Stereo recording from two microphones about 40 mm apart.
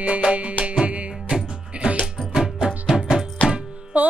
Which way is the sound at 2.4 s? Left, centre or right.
Centre.